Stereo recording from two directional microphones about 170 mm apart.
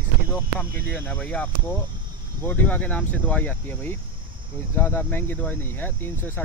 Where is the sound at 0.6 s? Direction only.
10° left (ahead or behind).